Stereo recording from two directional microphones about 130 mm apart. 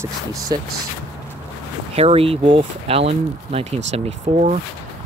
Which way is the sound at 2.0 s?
50° right (ahead or behind).